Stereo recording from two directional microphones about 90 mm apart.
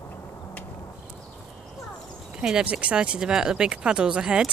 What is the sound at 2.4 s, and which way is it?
Speech, 10° right (ahead or behind).